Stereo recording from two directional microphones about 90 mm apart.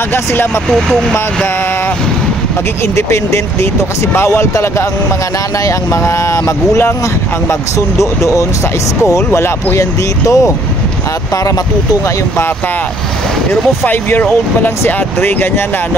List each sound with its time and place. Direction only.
0.1 s speech: 25° left (ahead or behind)
0.7 s speech: 5° left (ahead or behind)
3.0 s speech: 30° left (ahead or behind)
8.0 s speech: 35° left (ahead or behind)
13.5 s speech: 20° left (ahead or behind)